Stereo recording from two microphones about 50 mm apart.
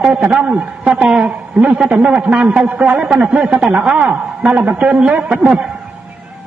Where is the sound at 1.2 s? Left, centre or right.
Right.